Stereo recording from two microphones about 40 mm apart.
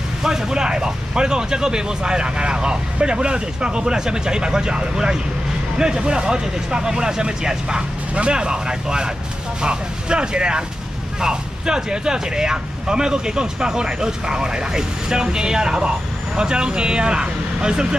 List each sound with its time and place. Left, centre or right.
0.2 s speech: centre